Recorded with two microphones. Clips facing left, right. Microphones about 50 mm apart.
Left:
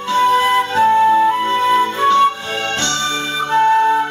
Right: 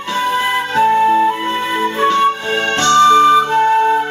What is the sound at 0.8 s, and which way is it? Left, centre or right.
Flute, right.